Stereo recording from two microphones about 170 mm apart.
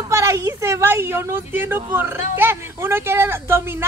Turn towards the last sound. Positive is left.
turn(degrees=-15)  # may be behind; listen again after turning